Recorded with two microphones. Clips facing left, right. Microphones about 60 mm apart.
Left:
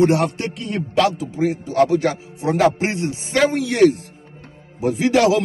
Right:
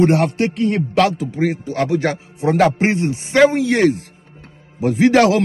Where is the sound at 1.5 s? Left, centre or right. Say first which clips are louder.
Left 2 dB; right.